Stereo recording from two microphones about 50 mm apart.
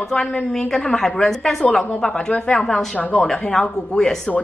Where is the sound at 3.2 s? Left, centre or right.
Centre.